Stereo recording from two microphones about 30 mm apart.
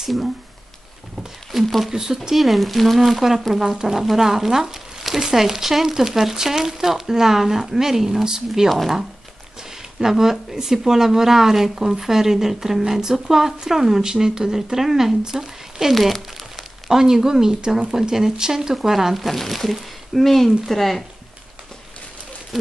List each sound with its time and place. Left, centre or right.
1.5 s a sound: centre
1.9 s speech: centre
2.3 s speech: centre
8.6 s speech: centre
9.9 s speech: centre
15.9 s speech: centre
16.9 s speech: centre